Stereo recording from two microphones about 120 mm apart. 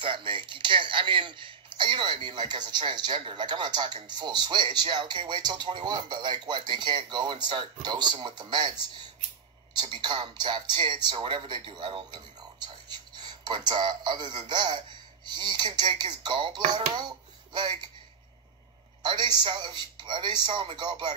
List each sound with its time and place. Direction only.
0.0 s speech: 45° right (ahead or behind)
9.8 s speech: 40° right (ahead or behind)
19.0 s speech: 40° right (ahead or behind)